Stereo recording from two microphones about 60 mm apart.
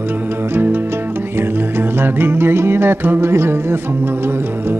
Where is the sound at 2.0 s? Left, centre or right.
Right.